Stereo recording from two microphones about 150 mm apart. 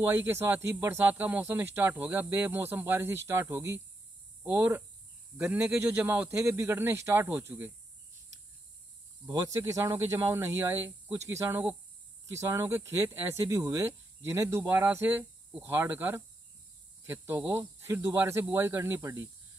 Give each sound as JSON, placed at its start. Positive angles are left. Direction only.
{"t": 0.0, "sound": "speech", "side_deg": -15}
{"t": 9.3, "sound": "speech", "side_deg": -25}